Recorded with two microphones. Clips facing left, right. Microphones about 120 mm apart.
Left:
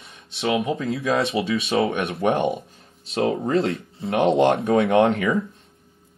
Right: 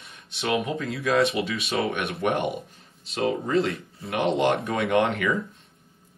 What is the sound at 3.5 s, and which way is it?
Speech, 25° left (ahead or behind).